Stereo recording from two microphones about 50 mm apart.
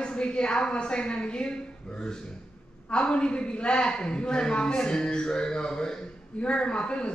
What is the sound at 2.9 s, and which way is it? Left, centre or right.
A man's voice, left.